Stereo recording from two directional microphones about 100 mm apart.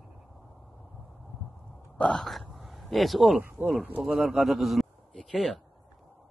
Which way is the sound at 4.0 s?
Centre (ahead or behind).